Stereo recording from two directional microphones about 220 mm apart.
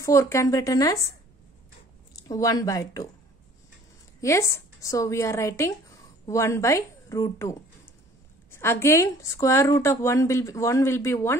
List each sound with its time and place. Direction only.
0.0 s speech: 15° left (ahead or behind)
2.2 s speech: 15° left (ahead or behind)
4.2 s speech: 15° left (ahead or behind)